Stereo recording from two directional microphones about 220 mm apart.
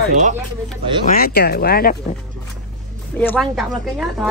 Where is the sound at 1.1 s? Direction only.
45° left (ahead or behind).